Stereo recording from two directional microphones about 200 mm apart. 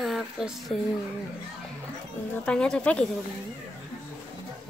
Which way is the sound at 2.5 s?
5° left (ahead or behind).